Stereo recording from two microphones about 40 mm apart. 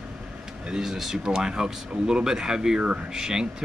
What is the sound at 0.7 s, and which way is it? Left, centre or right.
Speech, centre.